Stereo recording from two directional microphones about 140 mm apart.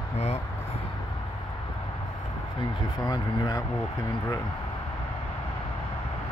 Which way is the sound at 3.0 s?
30° left (ahead or behind).